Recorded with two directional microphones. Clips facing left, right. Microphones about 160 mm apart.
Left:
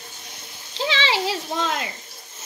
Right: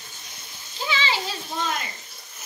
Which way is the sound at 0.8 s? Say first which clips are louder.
Left 4 dB; 75° left (ahead or behind).